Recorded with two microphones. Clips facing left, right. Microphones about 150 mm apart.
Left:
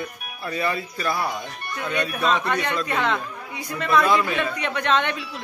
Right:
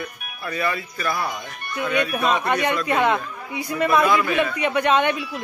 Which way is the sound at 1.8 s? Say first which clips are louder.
Right 3 dB; 10° right (ahead or behind).